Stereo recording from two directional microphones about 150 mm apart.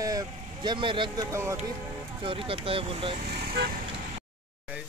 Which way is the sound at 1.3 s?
20° right (ahead or behind).